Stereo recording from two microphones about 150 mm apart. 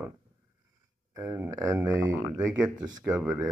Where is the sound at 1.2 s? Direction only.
15° right (ahead or behind).